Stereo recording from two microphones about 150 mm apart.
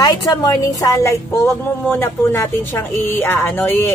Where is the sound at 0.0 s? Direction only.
25° left (ahead or behind).